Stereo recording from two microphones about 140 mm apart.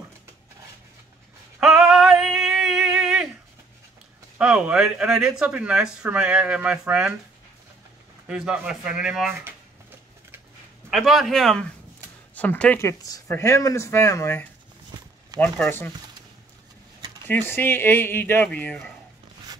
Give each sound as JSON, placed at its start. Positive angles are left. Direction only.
{"t": 1.6, "sound": "female singing", "side_deg": 0}
{"t": 4.4, "sound": "speech", "side_deg": -5}
{"t": 8.3, "sound": "speech", "side_deg": -5}
{"t": 9.4, "sound": "a sound", "side_deg": -15}
{"t": 10.9, "sound": "speech", "side_deg": 0}
{"t": 14.9, "sound": "a sound", "side_deg": -30}
{"t": 15.6, "sound": "speech", "side_deg": 15}
{"t": 17.3, "sound": "speech", "side_deg": 15}